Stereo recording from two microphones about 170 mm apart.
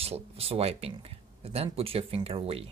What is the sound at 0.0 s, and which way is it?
Speech, 35° right (ahead or behind).